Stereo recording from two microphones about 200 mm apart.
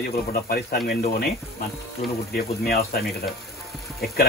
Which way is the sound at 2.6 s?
50° left (ahead or behind).